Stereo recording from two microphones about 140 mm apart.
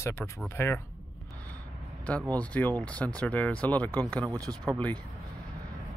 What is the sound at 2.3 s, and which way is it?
Speech, 10° left (ahead or behind).